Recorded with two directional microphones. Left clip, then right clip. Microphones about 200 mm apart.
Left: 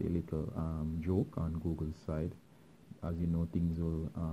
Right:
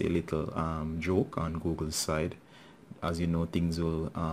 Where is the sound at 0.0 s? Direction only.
15° right (ahead or behind).